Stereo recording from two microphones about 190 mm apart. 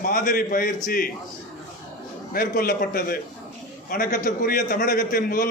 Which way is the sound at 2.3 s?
50° left (ahead or behind).